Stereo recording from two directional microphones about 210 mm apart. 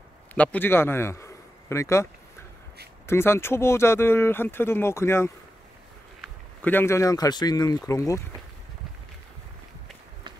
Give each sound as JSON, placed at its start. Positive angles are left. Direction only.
{"t": 0.3, "sound": "a man's voice", "side_deg": 10}
{"t": 3.1, "sound": "speech", "side_deg": 10}